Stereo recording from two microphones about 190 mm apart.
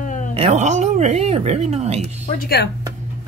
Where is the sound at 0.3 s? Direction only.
30° right (ahead or behind).